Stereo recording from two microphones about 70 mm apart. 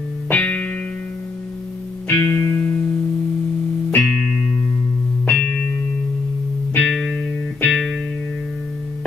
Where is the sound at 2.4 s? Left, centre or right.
Left.